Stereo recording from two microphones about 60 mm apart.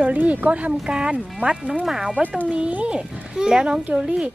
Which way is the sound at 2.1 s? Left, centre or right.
Right.